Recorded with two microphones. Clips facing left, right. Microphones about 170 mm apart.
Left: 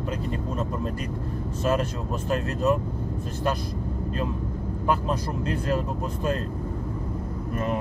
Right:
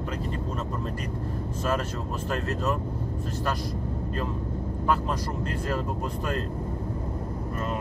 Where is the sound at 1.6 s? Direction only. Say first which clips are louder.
Left 4 dB; 20° left (ahead or behind).